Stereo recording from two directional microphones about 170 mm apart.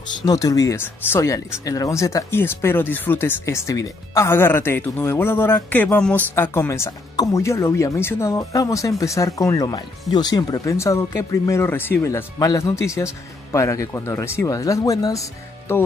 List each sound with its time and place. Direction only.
0.2 s speech: 20° left (ahead or behind)